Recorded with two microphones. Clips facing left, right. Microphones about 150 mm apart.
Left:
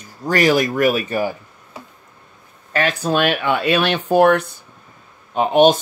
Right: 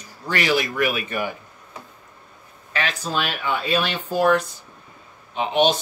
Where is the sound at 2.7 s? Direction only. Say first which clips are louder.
Left 7 dB; 55° left (ahead or behind).